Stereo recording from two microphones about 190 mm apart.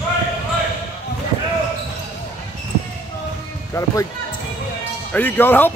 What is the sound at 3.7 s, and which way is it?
Speech, 15° left (ahead or behind).